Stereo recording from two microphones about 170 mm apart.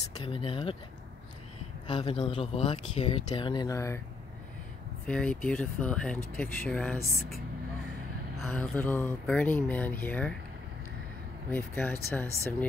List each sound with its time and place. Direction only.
0.2 s speech: 30° left (ahead or behind)
1.9 s speech: 30° left (ahead or behind)
5.0 s speech: 5° left (ahead or behind)
8.4 s speech: 5° left (ahead or behind)
11.5 s speech: 10° left (ahead or behind)